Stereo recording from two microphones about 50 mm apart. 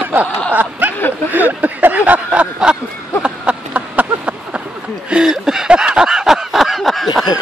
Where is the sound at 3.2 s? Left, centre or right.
Right.